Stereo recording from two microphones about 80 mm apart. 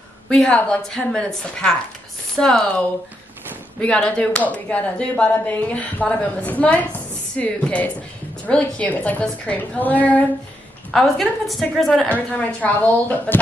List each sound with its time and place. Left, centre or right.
0.3 s speech: centre
3.8 s a woman's voice: centre
10.9 s a woman's voice: centre
12.1 s a woman's voice: centre